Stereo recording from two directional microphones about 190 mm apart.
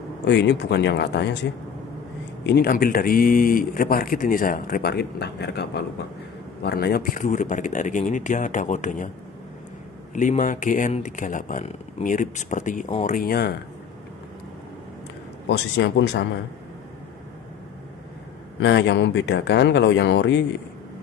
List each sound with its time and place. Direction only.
0.3 s speech: 65° left (ahead or behind)
2.4 s speech: 55° left (ahead or behind)
10.1 s speech: 40° left (ahead or behind)
15.5 s speech: 65° left (ahead or behind)
18.6 s speech: 70° left (ahead or behind)